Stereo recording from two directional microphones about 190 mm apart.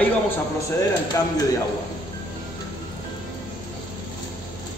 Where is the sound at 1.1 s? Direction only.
15° left (ahead or behind).